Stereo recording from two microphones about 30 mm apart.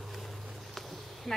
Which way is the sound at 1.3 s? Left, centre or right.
Centre.